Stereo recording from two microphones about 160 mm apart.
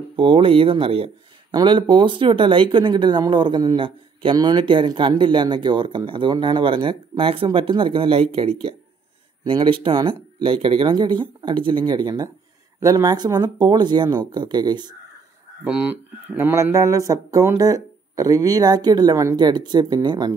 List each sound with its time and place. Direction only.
0.1 s speech: 30° right (ahead or behind)
15.6 s speech: 5° right (ahead or behind); by 20.3 s 25° right (ahead or behind)